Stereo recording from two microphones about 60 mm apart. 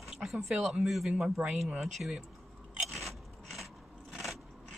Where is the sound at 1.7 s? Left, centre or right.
Centre.